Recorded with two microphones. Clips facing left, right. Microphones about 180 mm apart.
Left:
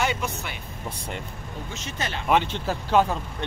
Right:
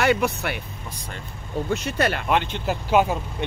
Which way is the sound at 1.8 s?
60° right (ahead or behind).